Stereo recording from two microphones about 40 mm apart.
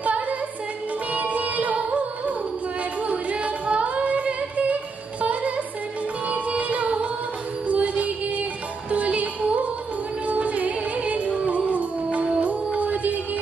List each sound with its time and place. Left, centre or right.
0.0 s music: right
3.0 s singing: right
5.2 s music: right